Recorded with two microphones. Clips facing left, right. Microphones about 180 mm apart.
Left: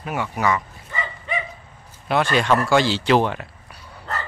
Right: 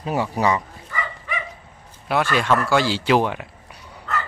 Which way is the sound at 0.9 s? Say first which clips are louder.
Left 1 dB; 25° left (ahead or behind).